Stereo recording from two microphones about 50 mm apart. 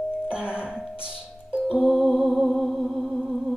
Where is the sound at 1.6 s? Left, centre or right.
Centre.